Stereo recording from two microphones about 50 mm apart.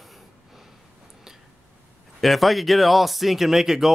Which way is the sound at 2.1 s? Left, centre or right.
Centre.